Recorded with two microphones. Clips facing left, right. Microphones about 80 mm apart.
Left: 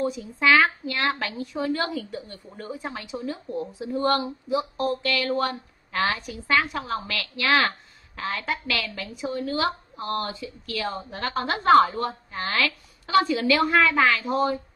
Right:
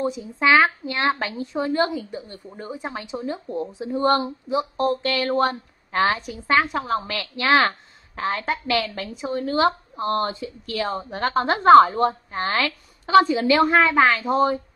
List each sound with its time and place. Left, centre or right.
0.0 s a woman's voice: right